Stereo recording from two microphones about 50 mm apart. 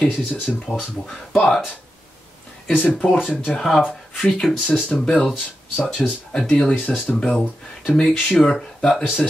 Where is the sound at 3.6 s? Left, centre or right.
Centre.